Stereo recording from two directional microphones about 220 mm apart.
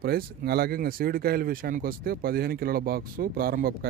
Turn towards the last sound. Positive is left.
turn(degrees=-40)  # may be behind; listen again after turning